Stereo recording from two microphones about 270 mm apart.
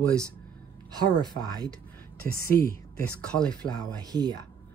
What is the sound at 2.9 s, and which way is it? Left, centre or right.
Speech, centre.